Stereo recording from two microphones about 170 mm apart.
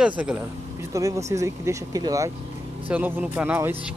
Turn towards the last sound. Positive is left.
turn(degrees=-10)  # may be behind; listen again after turning